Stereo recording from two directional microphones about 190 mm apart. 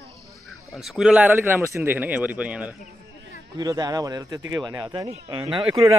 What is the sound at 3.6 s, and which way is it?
Speech, 20° right (ahead or behind).